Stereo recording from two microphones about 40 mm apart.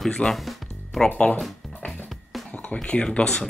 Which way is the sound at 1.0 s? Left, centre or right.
Left.